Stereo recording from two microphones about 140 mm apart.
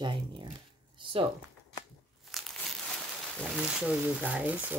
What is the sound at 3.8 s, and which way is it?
Speech, 10° right (ahead or behind).